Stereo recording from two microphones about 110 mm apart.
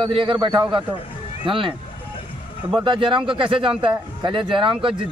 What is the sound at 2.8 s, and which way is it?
Speech, 50° right (ahead or behind).